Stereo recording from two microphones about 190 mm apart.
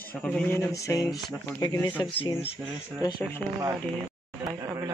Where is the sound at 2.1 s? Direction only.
30° left (ahead or behind).